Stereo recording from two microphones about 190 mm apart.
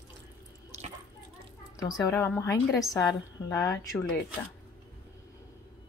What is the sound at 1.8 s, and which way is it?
A woman's voice, 15° left (ahead or behind).